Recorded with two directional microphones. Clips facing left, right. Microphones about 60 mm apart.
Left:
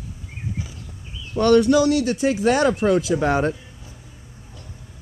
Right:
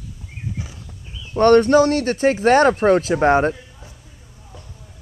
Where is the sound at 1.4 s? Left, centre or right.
Right.